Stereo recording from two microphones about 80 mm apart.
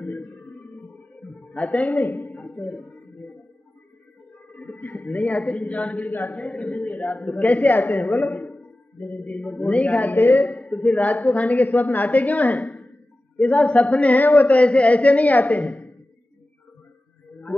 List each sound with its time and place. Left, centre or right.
0.0 s a sound: centre
4.6 s a woman's voice: centre
17.5 s music: centre